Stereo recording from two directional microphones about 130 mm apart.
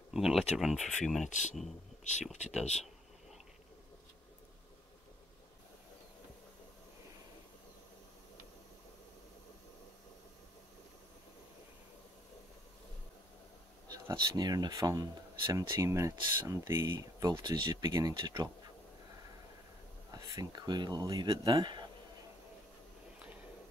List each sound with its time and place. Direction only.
0.1 s speech: centre (ahead or behind)
1.3 s speech: 70° left (ahead or behind)
13.8 s speech: 30° right (ahead or behind)
17.3 s speech: 35° right (ahead or behind)
17.8 s speech: 25° right (ahead or behind)
20.1 s speech: 30° right (ahead or behind)